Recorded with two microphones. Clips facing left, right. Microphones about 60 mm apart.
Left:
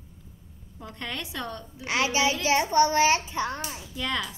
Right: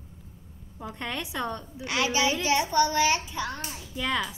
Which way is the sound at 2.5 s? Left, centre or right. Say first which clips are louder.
Left 3 dB; left.